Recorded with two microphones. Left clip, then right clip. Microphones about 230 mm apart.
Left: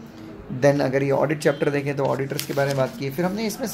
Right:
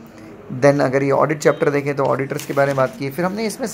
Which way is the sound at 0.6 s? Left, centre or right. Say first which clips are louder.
Right 4 dB; centre.